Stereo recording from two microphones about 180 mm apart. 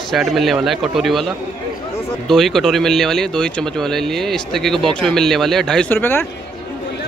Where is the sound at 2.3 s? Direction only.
Centre (ahead or behind).